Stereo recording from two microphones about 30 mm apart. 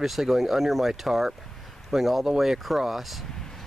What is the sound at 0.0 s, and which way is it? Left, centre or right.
Speech, centre.